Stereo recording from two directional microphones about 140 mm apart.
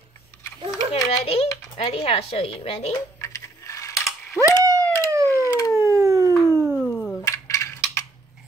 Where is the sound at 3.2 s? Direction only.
20° left (ahead or behind).